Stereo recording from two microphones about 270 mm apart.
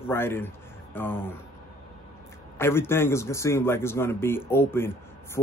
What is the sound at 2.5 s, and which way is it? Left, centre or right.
Speech, centre.